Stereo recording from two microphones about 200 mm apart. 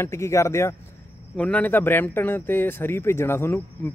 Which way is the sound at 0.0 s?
15° left (ahead or behind).